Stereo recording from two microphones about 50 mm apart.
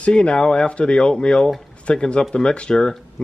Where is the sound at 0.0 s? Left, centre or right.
Left.